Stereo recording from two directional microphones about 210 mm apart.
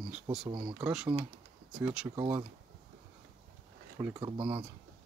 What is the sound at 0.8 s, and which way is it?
Speech, 5° right (ahead or behind).